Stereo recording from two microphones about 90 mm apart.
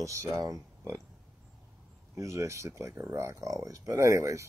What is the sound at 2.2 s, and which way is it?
Speech, 35° right (ahead or behind).